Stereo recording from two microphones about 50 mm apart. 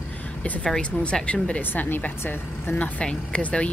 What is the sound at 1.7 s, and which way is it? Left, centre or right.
Speech, left.